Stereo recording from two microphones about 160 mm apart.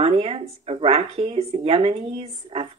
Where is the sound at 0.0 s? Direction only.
40° right (ahead or behind).